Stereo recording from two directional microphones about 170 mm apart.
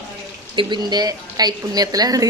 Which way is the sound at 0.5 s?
25° right (ahead or behind).